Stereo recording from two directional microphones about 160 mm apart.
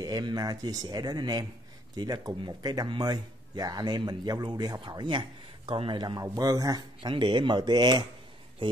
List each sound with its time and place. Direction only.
0.0 s speech: 25° right (ahead or behind)